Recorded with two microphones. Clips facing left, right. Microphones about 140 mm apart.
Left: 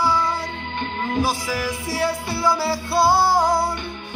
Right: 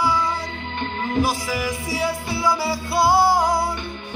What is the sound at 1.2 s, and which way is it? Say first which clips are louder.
Music: right 1 dB; centre (ahead or behind).